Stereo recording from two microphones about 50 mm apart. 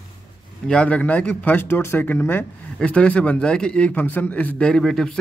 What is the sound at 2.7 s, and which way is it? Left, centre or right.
Speech, left.